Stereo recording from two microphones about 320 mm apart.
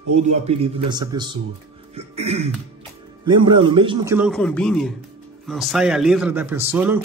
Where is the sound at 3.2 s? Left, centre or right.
Centre.